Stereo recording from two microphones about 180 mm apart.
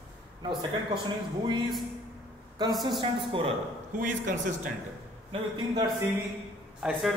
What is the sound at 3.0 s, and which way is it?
Speech, 30° right (ahead or behind).